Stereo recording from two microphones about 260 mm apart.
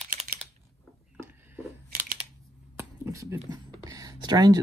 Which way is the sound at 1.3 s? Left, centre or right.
Centre.